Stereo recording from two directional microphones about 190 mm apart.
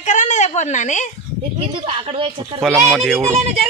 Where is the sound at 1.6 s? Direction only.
30° right (ahead or behind).